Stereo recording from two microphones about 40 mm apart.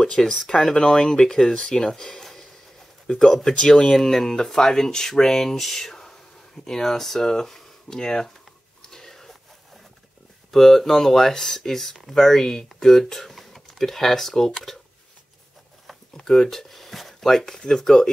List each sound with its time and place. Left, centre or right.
0.0 s speech: centre
8.8 s a sound: centre
10.5 s speech: centre
16.2 s speech: centre